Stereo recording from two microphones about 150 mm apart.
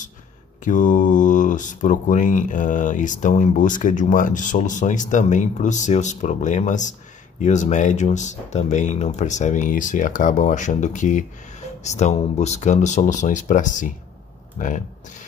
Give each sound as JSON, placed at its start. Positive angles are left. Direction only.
{"t": 0.7, "sound": "speech", "side_deg": 60}